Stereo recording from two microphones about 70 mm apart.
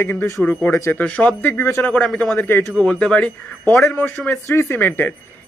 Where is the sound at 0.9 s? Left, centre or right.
Centre.